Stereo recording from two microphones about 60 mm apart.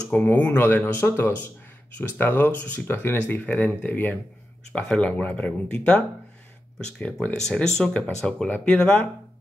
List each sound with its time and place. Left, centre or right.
0.1 s speech: left
4.7 s speech: centre
5.0 s speech: left